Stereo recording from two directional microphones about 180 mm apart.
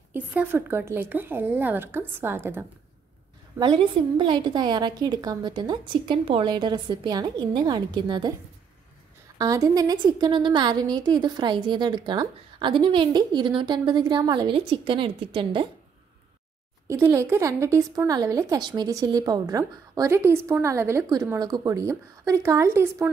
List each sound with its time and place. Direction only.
0.1 s speech: 10° right (ahead or behind)
3.5 s a woman's voice: 25° right (ahead or behind)
9.4 s a woman's voice: 20° right (ahead or behind)
16.8 s speech: 15° right (ahead or behind)